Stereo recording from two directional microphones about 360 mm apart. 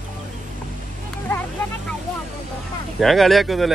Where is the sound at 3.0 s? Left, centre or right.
Centre.